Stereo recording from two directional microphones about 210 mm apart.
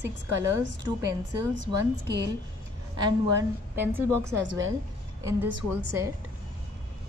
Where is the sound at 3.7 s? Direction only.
10° right (ahead or behind).